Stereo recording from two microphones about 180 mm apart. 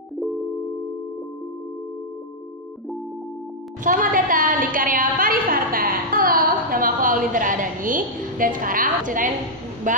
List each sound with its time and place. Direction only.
3.8 s a woman's voice: 50° right (ahead or behind)